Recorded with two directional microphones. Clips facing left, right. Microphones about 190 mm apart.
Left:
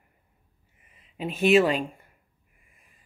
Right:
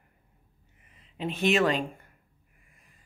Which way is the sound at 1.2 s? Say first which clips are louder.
Left 5 dB; 10° left (ahead or behind).